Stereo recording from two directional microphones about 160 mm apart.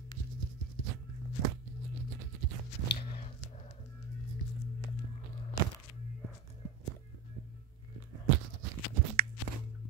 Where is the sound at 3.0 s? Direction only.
35° left (ahead or behind).